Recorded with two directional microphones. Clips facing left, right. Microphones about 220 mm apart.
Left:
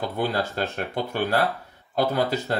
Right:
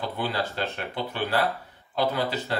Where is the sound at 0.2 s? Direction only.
45° left (ahead or behind).